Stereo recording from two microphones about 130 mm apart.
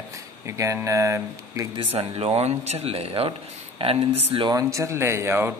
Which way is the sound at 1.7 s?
40° right (ahead or behind).